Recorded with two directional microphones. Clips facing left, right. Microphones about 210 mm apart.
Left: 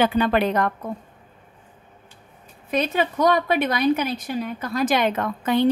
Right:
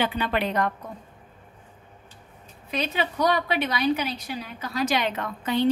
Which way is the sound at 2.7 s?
50° left (ahead or behind).